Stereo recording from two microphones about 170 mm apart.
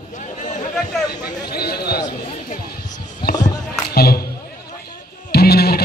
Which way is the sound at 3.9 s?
65° left (ahead or behind).